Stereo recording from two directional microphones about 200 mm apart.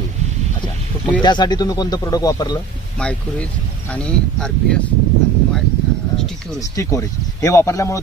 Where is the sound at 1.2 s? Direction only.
20° left (ahead or behind).